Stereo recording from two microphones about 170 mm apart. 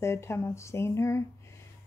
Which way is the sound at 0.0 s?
15° left (ahead or behind).